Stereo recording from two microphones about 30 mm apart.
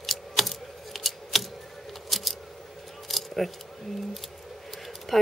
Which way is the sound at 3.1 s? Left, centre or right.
Centre.